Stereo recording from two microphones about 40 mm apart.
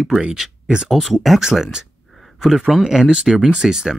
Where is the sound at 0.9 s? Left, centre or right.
Centre.